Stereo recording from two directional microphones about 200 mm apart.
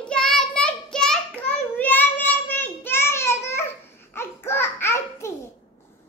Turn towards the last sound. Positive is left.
turn(degrees=10)  # may be behind; listen again after turning